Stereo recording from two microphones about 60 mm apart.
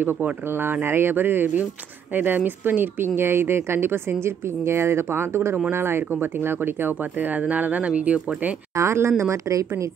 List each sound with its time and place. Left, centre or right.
0.0 s speech: right
8.7 s speech: right
9.5 s a woman's voice: right